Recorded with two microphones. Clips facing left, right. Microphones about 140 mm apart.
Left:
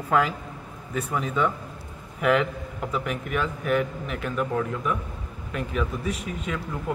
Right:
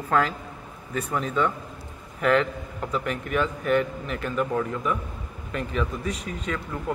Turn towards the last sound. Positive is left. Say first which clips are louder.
# even
turn(degrees=5)  # may be behind; listen again after turning